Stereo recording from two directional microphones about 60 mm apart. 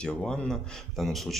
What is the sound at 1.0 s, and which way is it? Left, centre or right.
Speech, centre.